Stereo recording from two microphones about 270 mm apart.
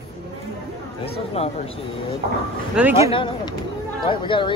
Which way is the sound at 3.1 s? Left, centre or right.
Centre.